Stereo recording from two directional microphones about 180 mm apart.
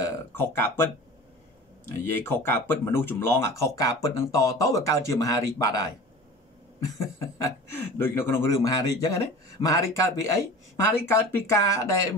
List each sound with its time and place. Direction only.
0.0 s a sound: 10° left (ahead or behind)
1.9 s speech: 15° left (ahead or behind)
7.2 s speech: 15° left (ahead or behind)